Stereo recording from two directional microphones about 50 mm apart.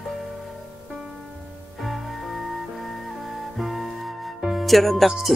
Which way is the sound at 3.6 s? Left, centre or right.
Centre.